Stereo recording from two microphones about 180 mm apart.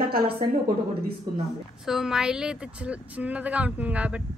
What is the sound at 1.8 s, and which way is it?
A woman's voice, centre (ahead or behind).